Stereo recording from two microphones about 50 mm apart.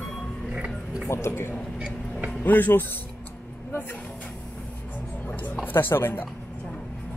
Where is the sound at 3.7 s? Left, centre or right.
Left.